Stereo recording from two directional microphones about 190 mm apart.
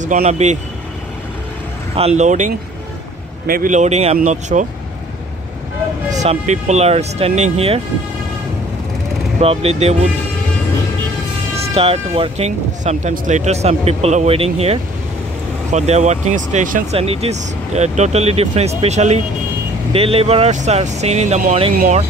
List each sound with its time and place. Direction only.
0.0 s speech: 40° right (ahead or behind)
2.0 s speech: 35° right (ahead or behind)
6.0 s speech: 40° right (ahead or behind)
9.4 s speech: 30° right (ahead or behind)
11.5 s speech: 30° right (ahead or behind)
21.7 s speech: 45° right (ahead or behind)